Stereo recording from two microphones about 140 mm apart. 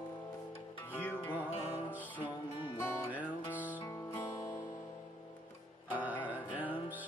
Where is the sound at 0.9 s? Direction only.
15° left (ahead or behind).